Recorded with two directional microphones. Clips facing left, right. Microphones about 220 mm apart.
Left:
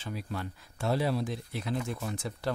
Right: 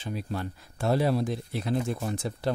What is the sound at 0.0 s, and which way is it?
Speech, 25° right (ahead or behind).